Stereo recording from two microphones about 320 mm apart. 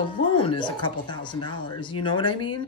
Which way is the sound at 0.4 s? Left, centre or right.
Centre.